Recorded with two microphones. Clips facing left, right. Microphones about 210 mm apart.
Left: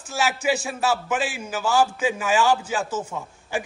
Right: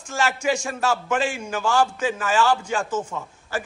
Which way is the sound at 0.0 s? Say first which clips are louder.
Even; 5° left (ahead or behind).